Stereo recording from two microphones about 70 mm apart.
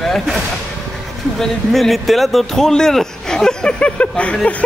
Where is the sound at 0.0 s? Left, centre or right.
Centre.